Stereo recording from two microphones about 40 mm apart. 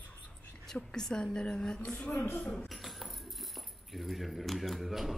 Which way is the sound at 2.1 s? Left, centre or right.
Left.